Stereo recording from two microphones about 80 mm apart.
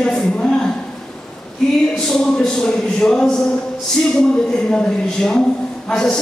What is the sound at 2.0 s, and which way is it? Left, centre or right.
Speech, centre.